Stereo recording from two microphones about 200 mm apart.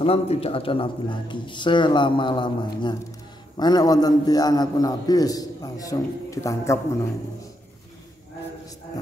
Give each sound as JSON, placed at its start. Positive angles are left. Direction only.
{"t": 0.0, "sound": "a man's voice", "side_deg": 30}